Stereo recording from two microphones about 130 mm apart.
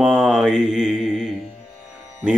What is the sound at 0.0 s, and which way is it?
Mantra, 5° right (ahead or behind).